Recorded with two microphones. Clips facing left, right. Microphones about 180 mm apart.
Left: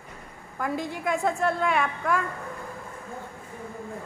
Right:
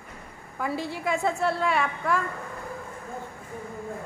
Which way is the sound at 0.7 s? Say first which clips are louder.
Left 1 dB; 50° left (ahead or behind).